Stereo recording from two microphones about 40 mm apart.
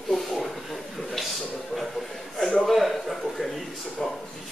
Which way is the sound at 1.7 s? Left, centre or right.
Centre.